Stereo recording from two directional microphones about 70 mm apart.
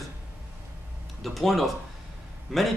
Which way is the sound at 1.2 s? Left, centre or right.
Centre.